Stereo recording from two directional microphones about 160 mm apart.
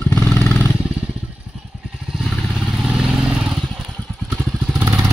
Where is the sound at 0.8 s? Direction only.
5° right (ahead or behind).